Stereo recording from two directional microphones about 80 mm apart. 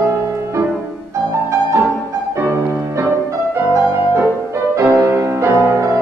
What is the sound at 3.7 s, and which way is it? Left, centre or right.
Music, right.